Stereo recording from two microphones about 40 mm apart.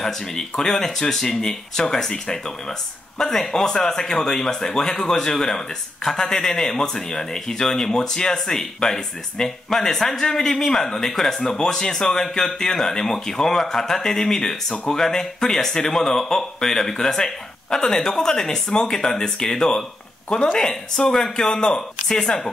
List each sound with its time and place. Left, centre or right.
0.0 s speech: centre